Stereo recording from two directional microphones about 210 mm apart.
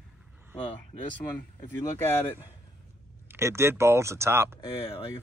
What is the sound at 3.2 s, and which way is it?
Speech, 10° right (ahead or behind).